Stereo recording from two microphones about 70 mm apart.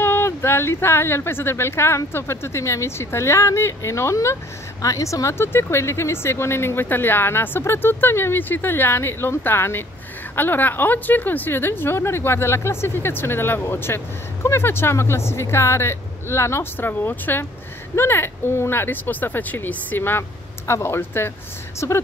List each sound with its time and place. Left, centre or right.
0.0 s a woman's voice: left
5.4 s a woman's voice: left